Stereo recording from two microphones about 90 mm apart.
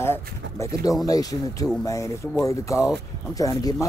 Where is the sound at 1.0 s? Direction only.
40° left (ahead or behind).